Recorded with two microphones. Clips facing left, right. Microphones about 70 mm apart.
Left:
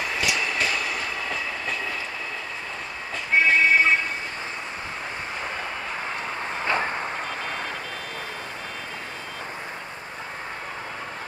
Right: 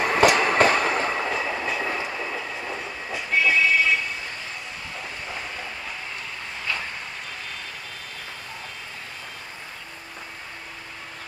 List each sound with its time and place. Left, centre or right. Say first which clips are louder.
0.0 s train: right 8 dB; right
1.3 s train: right 3 dB; centre
3.3 s vehicle: left 2 dB; left
6.6 s vehicle: left 6 dB; left